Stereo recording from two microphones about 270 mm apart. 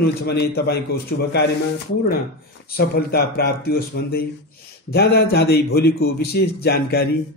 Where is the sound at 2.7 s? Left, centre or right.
Left.